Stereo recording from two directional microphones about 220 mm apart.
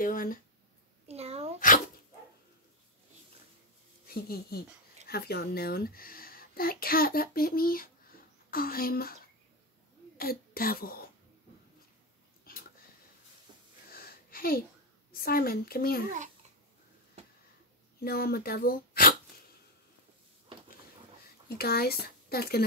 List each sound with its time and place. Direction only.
0.0 s speech: 40° left (ahead or behind)
1.0 s a sound: 30° right (ahead or behind)
4.1 s speech: 45° left (ahead or behind)
10.1 s speech: 45° left (ahead or behind)
12.5 s a sound: 40° left (ahead or behind)
13.9 s a sound: 45° left (ahead or behind)
15.2 s speech: 45° left (ahead or behind)
16.1 s babbling: 35° right (ahead or behind)
18.0 s speech: 45° left (ahead or behind)
21.5 s speech: 45° left (ahead or behind)